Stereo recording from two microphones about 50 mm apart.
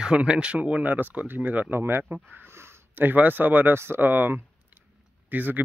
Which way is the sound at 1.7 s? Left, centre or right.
Right.